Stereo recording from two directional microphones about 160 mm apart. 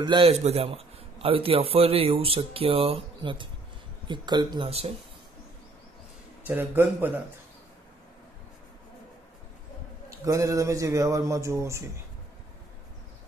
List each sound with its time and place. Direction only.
0.0 s a man's voice: 30° right (ahead or behind)
0.3 s a man's voice: 40° right (ahead or behind); by 4.6 s 25° right (ahead or behind)
4.6 s a man's voice: 40° right (ahead or behind)
6.4 s a man's voice: 15° right (ahead or behind)
10.0 s a man's voice: 20° right (ahead or behind)